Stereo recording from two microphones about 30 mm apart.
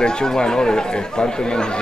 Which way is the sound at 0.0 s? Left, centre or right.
Left.